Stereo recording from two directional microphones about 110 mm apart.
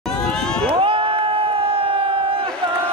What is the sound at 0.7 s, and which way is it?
Crowd, 55° right (ahead or behind).